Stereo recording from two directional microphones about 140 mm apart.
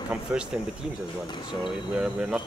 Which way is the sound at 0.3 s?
10° right (ahead or behind).